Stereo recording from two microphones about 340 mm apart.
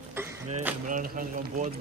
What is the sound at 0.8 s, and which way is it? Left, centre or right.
Speech, right.